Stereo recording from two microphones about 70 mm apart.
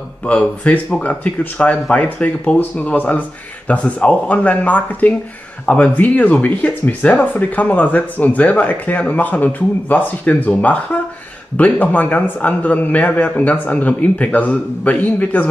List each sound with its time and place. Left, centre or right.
0.2 s speech: centre